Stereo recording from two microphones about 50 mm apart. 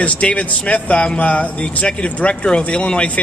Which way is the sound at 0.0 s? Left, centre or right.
Left.